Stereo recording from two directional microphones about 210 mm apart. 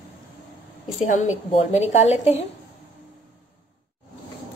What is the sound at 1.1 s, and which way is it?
A woman's voice, 35° left (ahead or behind).